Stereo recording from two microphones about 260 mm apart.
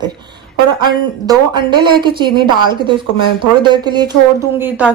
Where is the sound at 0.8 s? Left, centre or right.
Centre.